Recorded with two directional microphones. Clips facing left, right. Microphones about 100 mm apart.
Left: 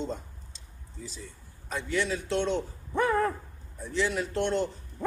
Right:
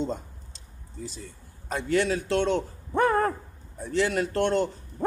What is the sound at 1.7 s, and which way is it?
Speech, 60° right (ahead or behind).